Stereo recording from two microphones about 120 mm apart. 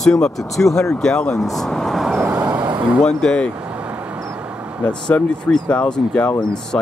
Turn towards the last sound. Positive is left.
turn(degrees=5)  # may be behind; listen again after turning